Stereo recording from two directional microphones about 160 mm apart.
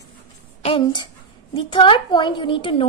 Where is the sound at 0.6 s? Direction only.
35° left (ahead or behind).